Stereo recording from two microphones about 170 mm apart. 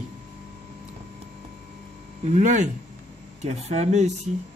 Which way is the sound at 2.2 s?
45° right (ahead or behind).